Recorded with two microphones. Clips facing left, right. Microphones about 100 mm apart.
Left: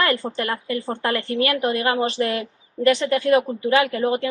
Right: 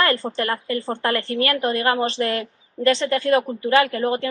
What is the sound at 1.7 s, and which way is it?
Speech, 40° right (ahead or behind).